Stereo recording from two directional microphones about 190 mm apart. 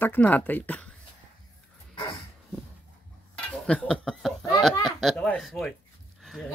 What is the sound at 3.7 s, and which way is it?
Speech, 5° left (ahead or behind).